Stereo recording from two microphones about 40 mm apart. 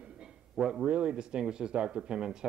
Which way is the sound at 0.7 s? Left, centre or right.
Right.